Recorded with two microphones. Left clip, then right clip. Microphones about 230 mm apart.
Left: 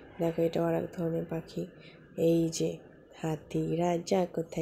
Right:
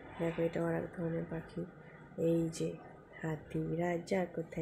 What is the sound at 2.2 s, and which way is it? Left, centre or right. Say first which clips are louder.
Speech: left 6 dB; centre.